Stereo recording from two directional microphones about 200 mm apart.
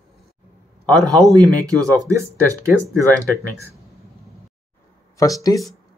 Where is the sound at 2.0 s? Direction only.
15° right (ahead or behind).